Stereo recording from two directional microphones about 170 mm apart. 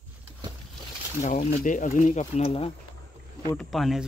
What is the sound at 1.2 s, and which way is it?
Speech, 50° left (ahead or behind).